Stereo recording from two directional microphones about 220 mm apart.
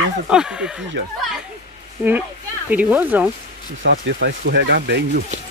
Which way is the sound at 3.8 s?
50° right (ahead or behind).